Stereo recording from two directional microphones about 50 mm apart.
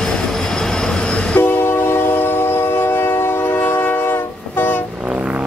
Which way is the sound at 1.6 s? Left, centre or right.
Left.